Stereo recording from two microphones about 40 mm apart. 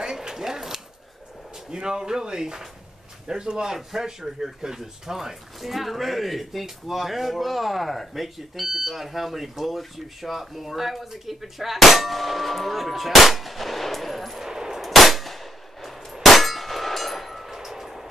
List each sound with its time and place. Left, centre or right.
0.0 s a sound: centre
1.7 s speech: centre
14.5 s gunshot: centre
14.9 s clang: centre